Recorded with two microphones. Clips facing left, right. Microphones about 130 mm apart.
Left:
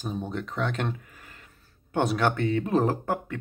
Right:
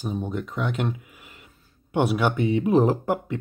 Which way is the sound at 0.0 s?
10° right (ahead or behind).